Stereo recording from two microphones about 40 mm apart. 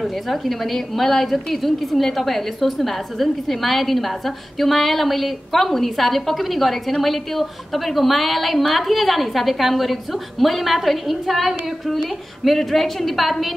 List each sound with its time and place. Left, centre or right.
0.0 s a woman's voice: centre